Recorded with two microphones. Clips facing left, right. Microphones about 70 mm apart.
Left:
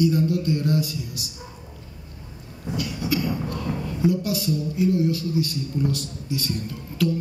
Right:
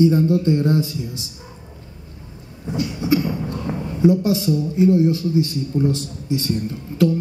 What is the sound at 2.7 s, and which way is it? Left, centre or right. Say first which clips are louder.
Speech: right 6 dB; right.